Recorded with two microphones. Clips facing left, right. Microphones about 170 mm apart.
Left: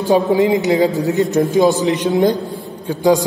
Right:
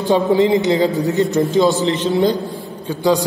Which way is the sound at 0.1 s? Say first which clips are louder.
Even; 15° left (ahead or behind).